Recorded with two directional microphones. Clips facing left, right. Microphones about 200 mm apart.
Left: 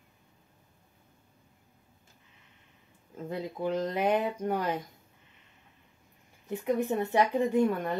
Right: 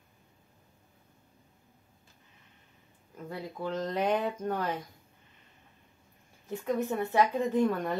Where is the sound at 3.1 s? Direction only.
20° left (ahead or behind).